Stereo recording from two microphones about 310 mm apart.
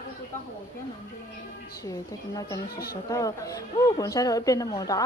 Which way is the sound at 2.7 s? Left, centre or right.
Left.